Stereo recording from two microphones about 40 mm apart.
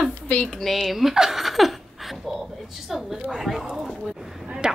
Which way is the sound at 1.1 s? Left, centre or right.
Centre.